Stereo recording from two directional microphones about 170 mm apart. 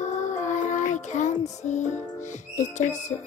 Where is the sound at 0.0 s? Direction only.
45° left (ahead or behind).